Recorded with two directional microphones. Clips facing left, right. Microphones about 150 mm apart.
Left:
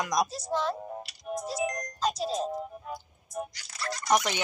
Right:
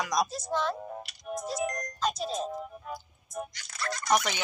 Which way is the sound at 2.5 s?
20° left (ahead or behind).